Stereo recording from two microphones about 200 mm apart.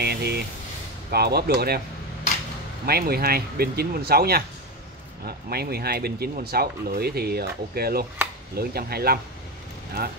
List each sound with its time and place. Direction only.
0.0 s a sound: 55° right (ahead or behind)
1.1 s speech: 55° right (ahead or behind)
2.9 s speech: 50° right (ahead or behind)